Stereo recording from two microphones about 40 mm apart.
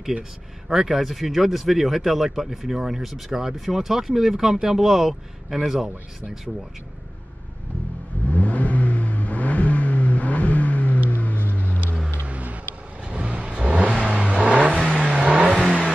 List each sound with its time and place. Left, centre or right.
0.7 s speech: centre
8.3 s vehicle: left
12.3 s vehicle: right
13.0 s vehicle: right
14.7 s vehicle: left
15.0 s vehicle: right